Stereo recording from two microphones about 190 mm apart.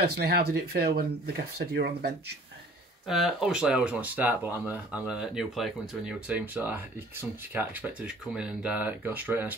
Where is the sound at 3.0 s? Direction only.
Centre (ahead or behind).